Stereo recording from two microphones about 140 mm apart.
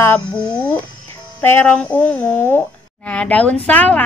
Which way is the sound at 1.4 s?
15° left (ahead or behind).